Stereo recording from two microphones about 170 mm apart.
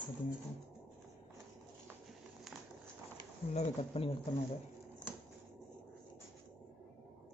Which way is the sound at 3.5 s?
35° left (ahead or behind).